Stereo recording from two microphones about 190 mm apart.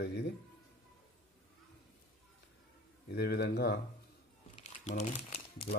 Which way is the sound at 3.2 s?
60° left (ahead or behind).